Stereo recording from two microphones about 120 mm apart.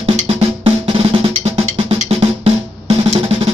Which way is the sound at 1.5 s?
55° right (ahead or behind).